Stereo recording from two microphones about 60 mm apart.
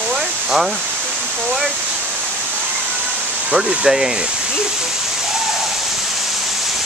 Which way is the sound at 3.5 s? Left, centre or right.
Centre.